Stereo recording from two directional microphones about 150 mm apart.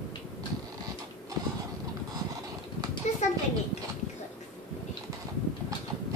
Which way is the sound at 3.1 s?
50° left (ahead or behind).